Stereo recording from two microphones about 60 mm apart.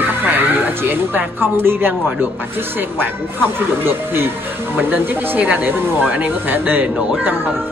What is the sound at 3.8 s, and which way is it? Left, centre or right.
Speech, right.